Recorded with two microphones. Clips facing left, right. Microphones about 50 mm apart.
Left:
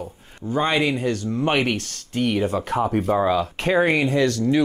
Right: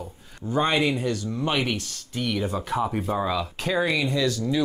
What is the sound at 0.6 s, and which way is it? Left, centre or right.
Speech, left.